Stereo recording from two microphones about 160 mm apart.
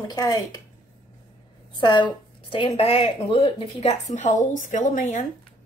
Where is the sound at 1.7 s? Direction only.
30° left (ahead or behind); by 5.2 s 55° left (ahead or behind).